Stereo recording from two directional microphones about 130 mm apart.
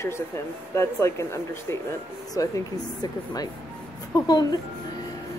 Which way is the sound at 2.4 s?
30° left (ahead or behind).